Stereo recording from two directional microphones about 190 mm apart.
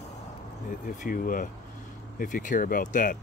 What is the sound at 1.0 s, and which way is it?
Speech, 45° left (ahead or behind).